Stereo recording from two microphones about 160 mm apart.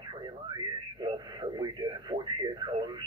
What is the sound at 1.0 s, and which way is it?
Radio, 25° right (ahead or behind).